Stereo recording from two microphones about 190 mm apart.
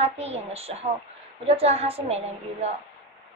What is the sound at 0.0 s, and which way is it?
A woman's voice, 35° right (ahead or behind).